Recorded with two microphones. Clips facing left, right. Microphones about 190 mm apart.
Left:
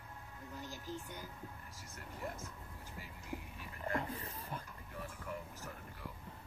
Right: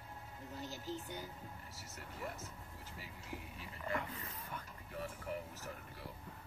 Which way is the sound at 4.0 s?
30° left (ahead or behind).